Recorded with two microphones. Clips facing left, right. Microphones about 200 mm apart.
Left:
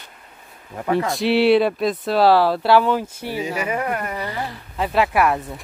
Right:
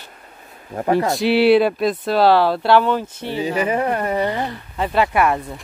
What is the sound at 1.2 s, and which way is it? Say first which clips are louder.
Speech: right 1 dB; centre (ahead or behind).